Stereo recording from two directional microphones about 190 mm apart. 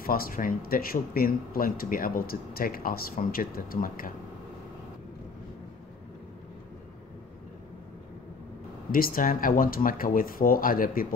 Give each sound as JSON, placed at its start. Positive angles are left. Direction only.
{"t": 0.0, "sound": "a man's voice", "side_deg": 50}
{"t": 8.9, "sound": "a man's voice", "side_deg": 50}